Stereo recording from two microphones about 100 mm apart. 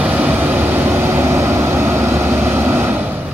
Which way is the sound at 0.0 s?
15° right (ahead or behind).